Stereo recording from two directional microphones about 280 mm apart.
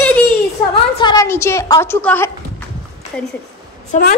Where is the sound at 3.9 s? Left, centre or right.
Left.